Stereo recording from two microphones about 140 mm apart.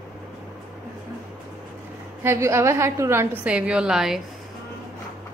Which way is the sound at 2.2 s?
20° right (ahead or behind).